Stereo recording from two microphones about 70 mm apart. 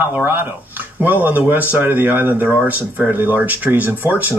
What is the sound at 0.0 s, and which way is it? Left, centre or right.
Speech, right.